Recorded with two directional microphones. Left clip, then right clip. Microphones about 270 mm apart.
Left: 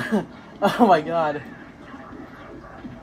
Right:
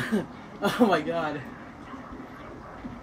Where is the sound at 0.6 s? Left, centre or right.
Centre.